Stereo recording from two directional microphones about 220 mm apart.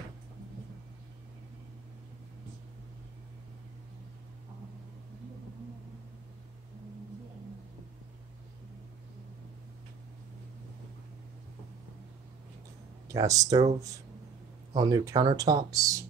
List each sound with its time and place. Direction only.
13.1 s speech: 15° right (ahead or behind)
14.7 s speech: 20° right (ahead or behind)